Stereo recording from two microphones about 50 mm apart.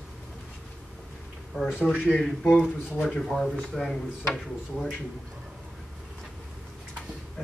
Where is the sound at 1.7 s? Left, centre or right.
Centre.